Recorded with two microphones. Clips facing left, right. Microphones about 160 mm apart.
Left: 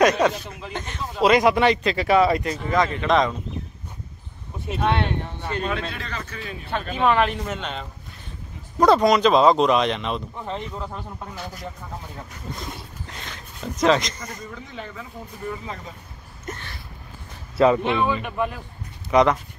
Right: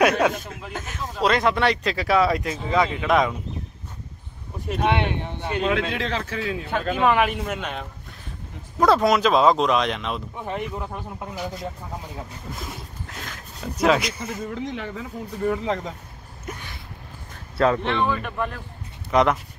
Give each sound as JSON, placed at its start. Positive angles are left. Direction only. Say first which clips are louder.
{"t": 0.2, "sound": "speech", "louder": "left 1 dB", "side_deg": -10}
{"t": 4.8, "sound": "speech", "louder": "even", "side_deg": -15}
{"t": 5.6, "sound": "a man's voice", "louder": "right 6 dB", "side_deg": -90}
{"t": 7.0, "sound": "speech", "louder": "left 1 dB", "side_deg": -10}
{"t": 12.4, "sound": "speech", "louder": "left 1 dB", "side_deg": -5}
{"t": 14.4, "sound": "speech", "louder": "right 6 dB", "side_deg": -85}
{"t": 16.4, "sound": "a sound", "louder": "left 1 dB", "side_deg": -10}
{"t": 17.6, "sound": "speech", "louder": "left 3 dB", "side_deg": 5}